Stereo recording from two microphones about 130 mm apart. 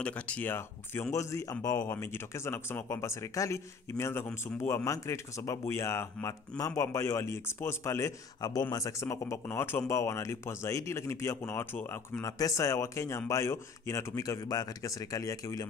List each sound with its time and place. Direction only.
0.0 s speech: 10° left (ahead or behind)